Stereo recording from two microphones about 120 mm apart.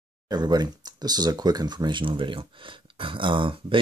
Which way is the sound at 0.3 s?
35° right (ahead or behind).